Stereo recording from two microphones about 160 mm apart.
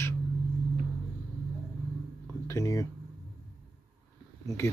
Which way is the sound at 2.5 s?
20° left (ahead or behind).